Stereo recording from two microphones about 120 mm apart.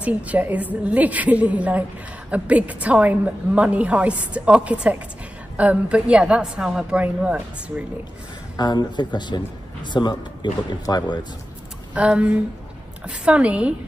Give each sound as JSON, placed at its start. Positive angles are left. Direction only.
{"t": 0.0, "sound": "a woman's voice", "side_deg": -10}
{"t": 8.5, "sound": "speech", "side_deg": 35}
{"t": 11.9, "sound": "a woman's voice", "side_deg": -10}